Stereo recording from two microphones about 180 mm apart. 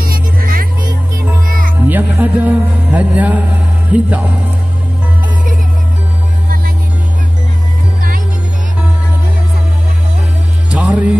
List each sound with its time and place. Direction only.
0.0 s music: 55° right (ahead or behind)
1.9 s music: 10° right (ahead or behind)
10.7 s music: 5° right (ahead or behind)